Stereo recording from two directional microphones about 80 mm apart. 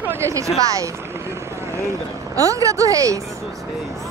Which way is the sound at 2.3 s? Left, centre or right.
Right.